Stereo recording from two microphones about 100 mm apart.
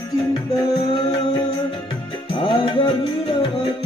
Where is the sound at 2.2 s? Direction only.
60° left (ahead or behind).